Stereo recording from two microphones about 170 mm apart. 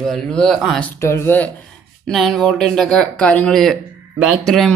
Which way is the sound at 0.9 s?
15° left (ahead or behind).